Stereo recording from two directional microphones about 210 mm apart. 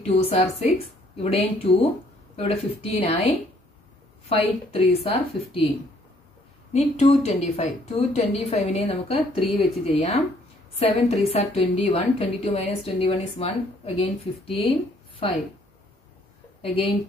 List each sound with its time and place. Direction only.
0.0 s a woman's voice: 30° left (ahead or behind)
6.7 s a woman's voice: 30° left (ahead or behind)